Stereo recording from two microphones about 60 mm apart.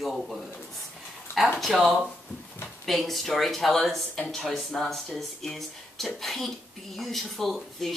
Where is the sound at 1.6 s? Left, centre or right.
Centre.